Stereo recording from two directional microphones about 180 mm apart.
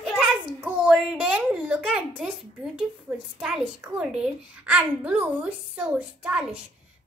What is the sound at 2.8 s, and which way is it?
A woman's voice, 5° right (ahead or behind).